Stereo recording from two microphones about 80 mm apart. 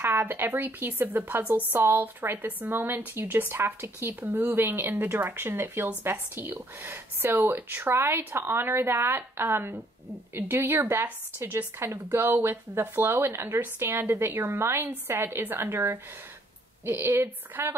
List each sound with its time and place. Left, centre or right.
0.0 s speech: right